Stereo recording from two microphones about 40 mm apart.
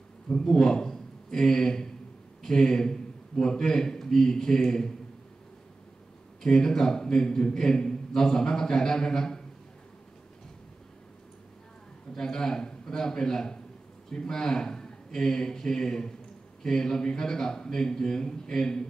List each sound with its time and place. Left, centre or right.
0.4 s a man's voice: centre
6.4 s a man's voice: centre
12.2 s a man's voice: centre